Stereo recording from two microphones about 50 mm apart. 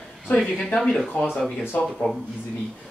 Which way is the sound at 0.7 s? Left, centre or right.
Centre.